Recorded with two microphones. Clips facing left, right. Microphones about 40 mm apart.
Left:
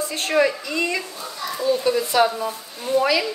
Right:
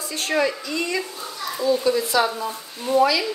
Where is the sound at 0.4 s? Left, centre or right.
Left.